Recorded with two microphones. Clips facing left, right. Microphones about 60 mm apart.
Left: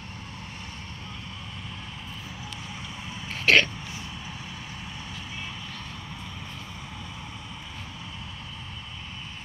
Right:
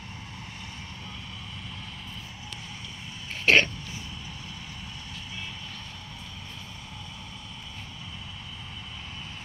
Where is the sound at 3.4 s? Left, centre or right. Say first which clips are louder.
Left 1 dB; right.